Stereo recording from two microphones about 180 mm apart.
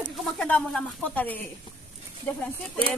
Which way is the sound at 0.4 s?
5° left (ahead or behind).